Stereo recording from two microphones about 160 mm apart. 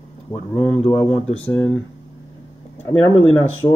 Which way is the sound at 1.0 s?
40° left (ahead or behind).